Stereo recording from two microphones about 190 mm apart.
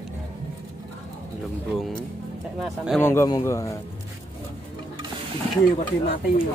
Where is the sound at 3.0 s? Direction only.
15° left (ahead or behind).